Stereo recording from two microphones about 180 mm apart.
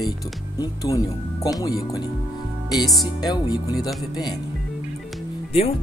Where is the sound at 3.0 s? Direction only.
20° left (ahead or behind).